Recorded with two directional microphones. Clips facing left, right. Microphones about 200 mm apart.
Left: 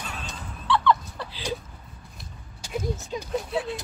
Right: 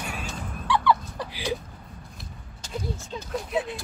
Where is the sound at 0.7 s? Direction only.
15° right (ahead or behind).